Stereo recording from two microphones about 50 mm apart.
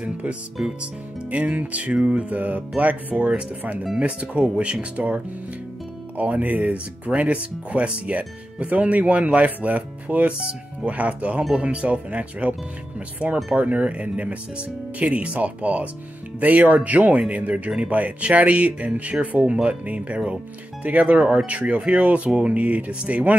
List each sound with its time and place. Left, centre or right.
0.0 s speech: right